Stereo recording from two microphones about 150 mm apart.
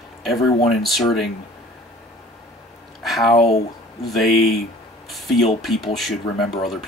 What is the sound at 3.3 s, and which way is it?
Speech, 40° left (ahead or behind).